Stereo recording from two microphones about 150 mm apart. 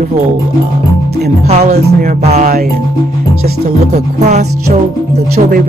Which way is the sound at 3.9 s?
50° right (ahead or behind).